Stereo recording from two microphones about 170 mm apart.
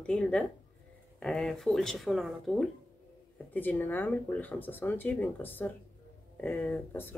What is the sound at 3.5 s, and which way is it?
Speech, 10° left (ahead or behind).